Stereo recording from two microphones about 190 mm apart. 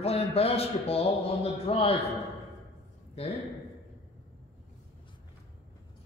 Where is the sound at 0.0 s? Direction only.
30° left (ahead or behind).